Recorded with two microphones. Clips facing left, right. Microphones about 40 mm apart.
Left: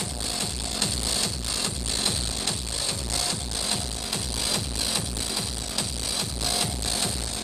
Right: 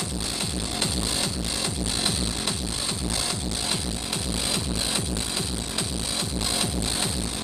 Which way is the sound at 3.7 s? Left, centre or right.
Centre.